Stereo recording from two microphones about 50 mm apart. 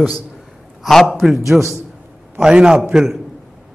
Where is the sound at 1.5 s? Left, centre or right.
Centre.